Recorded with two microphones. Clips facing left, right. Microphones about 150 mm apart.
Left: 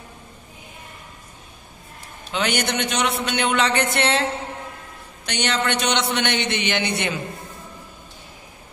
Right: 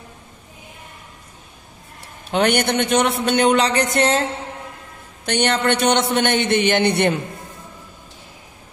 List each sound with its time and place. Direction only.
2.3 s a man's voice: 55° right (ahead or behind)
5.2 s a woman's voice: 50° right (ahead or behind)